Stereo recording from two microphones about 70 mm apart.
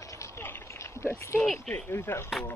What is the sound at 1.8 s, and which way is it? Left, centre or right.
Speech, left.